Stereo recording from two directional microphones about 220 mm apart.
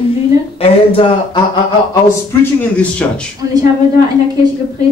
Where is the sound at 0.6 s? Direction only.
25° left (ahead or behind).